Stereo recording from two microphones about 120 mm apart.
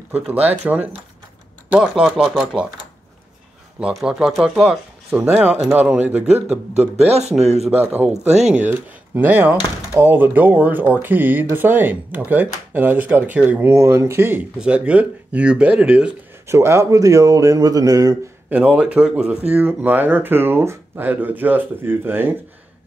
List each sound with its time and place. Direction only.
0.1 s speech: 15° right (ahead or behind)
1.7 s speech: 10° right (ahead or behind)
3.8 s speech: 5° right (ahead or behind)
7.0 s speech: 65° right (ahead or behind)
7.8 s speech: 15° right (ahead or behind)
14.6 s speech: 10° right (ahead or behind)
16.4 s speech: 20° right (ahead or behind)
18.5 s speech: 10° right (ahead or behind)